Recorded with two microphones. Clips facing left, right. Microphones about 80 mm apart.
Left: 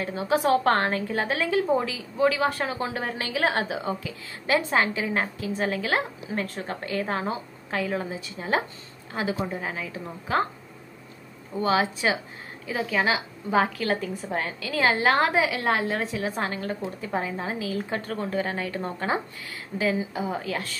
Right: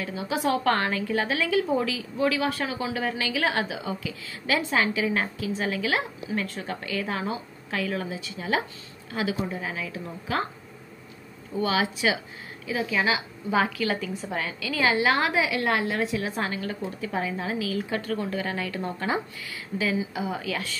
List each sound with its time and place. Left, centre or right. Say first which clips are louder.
0.0 s a woman's voice: left 4 dB; left
0.5 s a woman's voice: left 1 dB; left
11.6 s a woman's voice: left 2 dB; left
19.8 s a woman's voice: left 2 dB; left